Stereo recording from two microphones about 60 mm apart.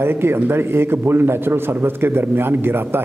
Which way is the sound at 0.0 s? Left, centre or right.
Right.